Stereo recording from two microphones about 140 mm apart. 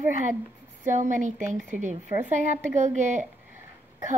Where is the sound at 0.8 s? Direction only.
65° right (ahead or behind).